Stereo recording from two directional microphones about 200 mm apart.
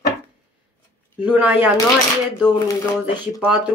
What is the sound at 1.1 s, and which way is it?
Speech, 10° right (ahead or behind).